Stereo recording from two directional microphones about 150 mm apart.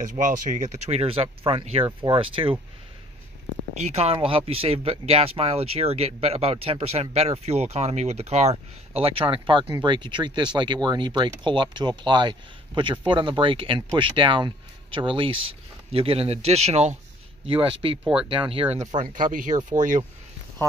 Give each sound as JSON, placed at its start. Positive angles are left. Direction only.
{"t": 0.0, "sound": "speech", "side_deg": -55}
{"t": 3.8, "sound": "speech", "side_deg": -45}
{"t": 18.9, "sound": "speech", "side_deg": -60}